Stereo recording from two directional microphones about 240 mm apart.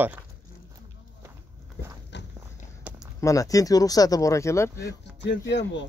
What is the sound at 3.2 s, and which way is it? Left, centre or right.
Speech, centre.